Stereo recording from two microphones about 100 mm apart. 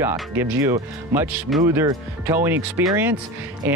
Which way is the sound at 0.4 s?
25° right (ahead or behind).